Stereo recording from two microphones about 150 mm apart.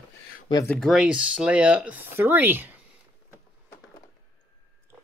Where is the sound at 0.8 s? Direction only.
Centre (ahead or behind).